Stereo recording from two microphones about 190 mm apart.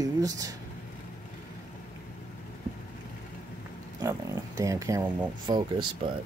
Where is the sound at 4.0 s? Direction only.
20° right (ahead or behind).